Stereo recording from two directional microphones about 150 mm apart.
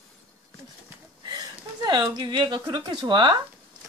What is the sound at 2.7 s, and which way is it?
Speech, 30° right (ahead or behind).